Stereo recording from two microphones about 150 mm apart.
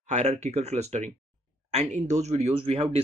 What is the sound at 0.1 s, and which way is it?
Speech, 50° right (ahead or behind).